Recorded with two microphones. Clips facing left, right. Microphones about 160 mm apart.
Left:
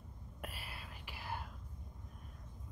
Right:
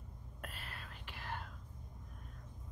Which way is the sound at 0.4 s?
10° left (ahead or behind).